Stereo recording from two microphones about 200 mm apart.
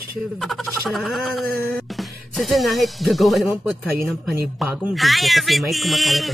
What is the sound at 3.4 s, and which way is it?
Speech, 5° right (ahead or behind).